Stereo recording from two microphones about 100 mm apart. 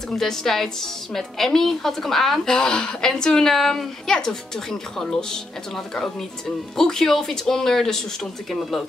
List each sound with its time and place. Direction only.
0.1 s a woman's voice: 5° left (ahead or behind)
6.8 s a woman's voice: 5° left (ahead or behind)